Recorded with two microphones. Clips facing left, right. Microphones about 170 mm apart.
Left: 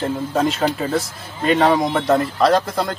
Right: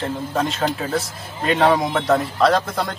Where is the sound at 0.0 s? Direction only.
Centre (ahead or behind).